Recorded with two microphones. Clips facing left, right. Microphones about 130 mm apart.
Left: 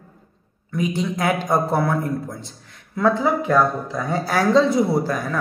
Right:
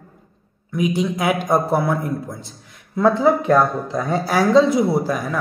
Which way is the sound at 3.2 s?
20° right (ahead or behind).